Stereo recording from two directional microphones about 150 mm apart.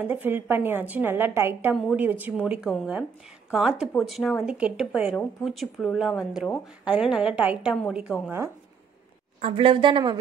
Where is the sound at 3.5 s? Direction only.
5° right (ahead or behind).